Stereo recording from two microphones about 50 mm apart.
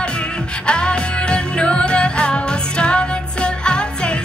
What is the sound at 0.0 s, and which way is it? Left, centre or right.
Music, centre.